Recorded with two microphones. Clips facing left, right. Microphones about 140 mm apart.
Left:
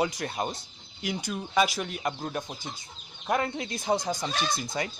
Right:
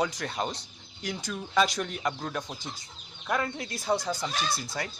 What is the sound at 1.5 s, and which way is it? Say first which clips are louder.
Speech: even; 10° left (ahead or behind).